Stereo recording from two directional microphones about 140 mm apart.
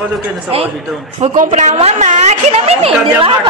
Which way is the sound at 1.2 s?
65° right (ahead or behind).